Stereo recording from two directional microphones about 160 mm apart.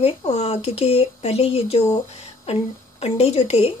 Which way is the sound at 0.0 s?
40° left (ahead or behind).